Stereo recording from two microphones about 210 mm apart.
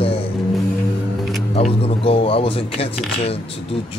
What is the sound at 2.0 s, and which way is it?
Speech, 25° left (ahead or behind).